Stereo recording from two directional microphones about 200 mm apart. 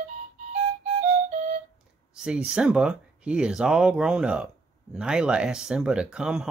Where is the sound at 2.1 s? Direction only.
5° right (ahead or behind).